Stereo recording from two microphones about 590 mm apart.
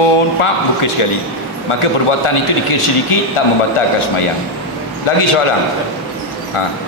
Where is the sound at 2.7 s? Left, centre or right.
Left.